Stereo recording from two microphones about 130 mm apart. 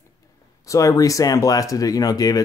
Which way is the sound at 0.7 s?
25° left (ahead or behind).